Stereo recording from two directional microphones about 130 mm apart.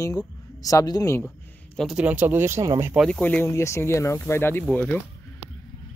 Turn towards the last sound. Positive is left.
turn(degrees=10)  # may be behind; listen again after turning